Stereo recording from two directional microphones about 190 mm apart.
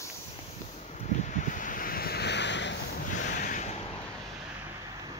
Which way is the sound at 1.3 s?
40° left (ahead or behind).